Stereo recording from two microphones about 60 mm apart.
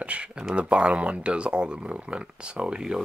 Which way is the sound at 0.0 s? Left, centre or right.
Right.